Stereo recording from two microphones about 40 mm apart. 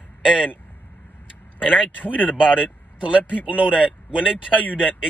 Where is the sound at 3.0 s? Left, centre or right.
Right.